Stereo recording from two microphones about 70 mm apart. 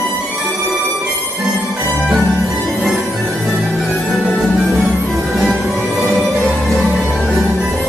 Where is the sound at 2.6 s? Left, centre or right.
Centre.